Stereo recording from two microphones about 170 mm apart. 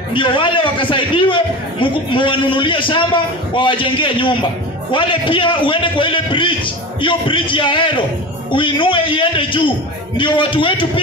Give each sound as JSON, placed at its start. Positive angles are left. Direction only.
{"t": 0.1, "sound": "a man's voice", "side_deg": 30}